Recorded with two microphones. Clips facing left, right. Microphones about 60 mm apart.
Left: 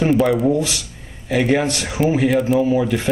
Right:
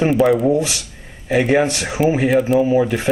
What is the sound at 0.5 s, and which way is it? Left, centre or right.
Speech, right.